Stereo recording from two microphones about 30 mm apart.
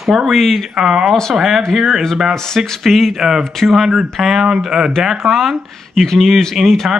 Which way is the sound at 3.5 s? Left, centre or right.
Centre.